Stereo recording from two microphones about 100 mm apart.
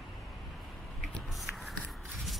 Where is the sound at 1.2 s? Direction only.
Centre (ahead or behind).